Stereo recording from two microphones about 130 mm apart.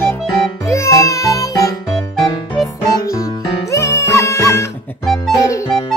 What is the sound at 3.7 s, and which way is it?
Music, 25° left (ahead or behind).